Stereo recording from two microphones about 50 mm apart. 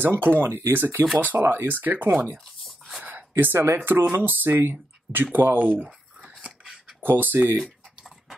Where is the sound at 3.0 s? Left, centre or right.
Right.